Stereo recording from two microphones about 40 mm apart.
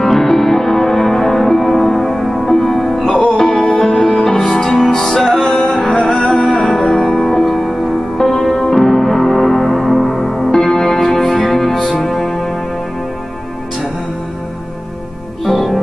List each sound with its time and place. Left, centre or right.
0.0 s music: centre
5.6 s music: left
6.3 s music: centre
15.4 s music: centre